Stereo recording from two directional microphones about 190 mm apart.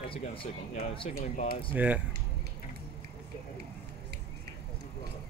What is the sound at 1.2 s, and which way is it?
Speech, 40° left (ahead or behind).